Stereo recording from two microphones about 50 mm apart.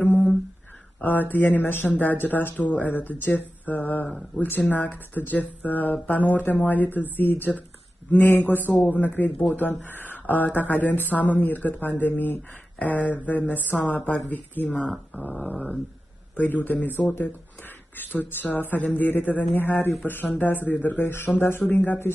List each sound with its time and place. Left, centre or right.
0.0 s a sound: left
1.0 s speech: left
14.8 s speech: centre
16.3 s speech: left
21.0 s speech: left